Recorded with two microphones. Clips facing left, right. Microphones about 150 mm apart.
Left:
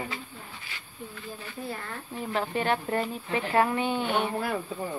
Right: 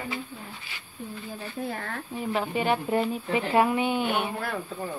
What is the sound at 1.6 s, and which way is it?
Speech, 65° right (ahead or behind).